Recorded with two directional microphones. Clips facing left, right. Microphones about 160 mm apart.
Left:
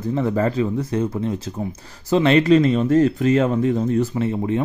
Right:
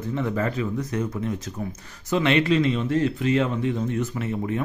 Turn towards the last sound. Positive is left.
turn(degrees=30)  # may be behind; listen again after turning